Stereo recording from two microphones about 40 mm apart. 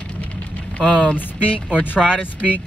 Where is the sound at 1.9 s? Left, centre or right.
Right.